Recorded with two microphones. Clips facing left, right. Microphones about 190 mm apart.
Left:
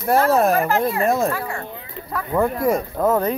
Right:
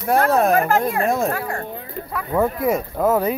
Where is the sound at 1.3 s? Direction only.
45° right (ahead or behind).